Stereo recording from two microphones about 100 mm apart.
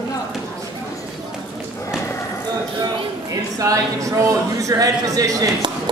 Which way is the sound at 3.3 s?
35° right (ahead or behind).